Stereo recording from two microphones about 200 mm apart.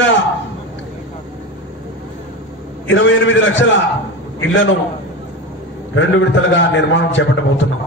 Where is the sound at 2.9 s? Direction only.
70° left (ahead or behind).